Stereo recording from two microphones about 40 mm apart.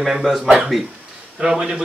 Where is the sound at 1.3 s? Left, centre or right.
Centre.